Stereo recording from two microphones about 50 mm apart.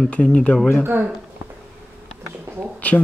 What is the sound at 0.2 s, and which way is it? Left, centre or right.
Speech, left.